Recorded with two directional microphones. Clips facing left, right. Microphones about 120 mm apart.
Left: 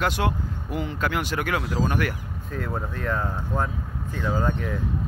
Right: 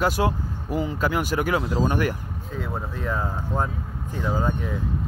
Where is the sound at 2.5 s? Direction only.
5° right (ahead or behind).